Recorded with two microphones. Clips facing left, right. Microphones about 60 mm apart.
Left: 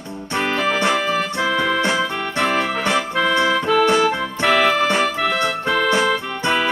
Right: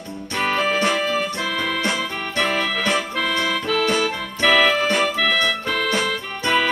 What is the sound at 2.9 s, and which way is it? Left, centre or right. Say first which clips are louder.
Accordion: left 4 dB; left.